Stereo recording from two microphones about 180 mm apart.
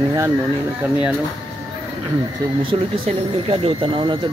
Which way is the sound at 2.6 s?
30° right (ahead or behind).